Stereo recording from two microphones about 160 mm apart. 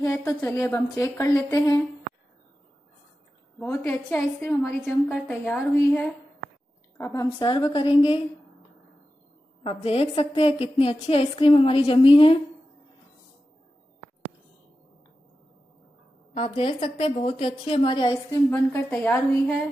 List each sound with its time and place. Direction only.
0.0 s a woman's voice: 20° left (ahead or behind)
3.5 s a woman's voice: 15° left (ahead or behind)
7.0 s a woman's voice: 25° left (ahead or behind)
9.6 s a woman's voice: 35° left (ahead or behind)
16.3 s a woman's voice: 35° left (ahead or behind)
18.5 s a woman's voice: 10° left (ahead or behind)